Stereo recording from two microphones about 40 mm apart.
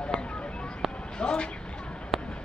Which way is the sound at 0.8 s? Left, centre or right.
Centre.